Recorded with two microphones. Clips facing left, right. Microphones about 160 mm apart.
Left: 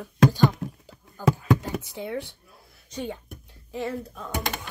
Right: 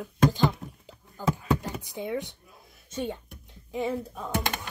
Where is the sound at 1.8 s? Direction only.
15° right (ahead or behind).